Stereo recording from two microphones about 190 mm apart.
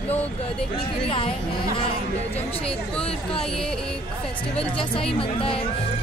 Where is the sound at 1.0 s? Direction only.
30° left (ahead or behind).